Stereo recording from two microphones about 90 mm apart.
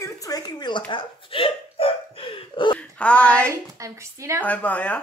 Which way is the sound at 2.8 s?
15° left (ahead or behind).